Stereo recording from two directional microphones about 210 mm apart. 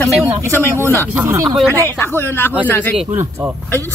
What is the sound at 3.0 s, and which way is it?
Speech, 10° right (ahead or behind).